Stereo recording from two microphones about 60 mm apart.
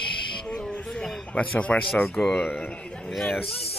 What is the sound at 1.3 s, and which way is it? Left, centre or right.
Speech, centre.